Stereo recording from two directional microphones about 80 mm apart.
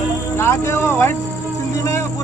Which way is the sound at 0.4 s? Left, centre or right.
Left.